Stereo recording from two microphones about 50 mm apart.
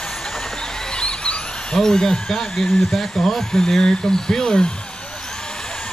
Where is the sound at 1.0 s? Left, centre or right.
Left.